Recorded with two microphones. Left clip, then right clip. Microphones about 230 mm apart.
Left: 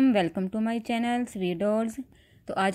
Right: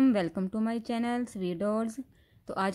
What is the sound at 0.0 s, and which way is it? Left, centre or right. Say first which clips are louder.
Speech: left 3 dB; centre.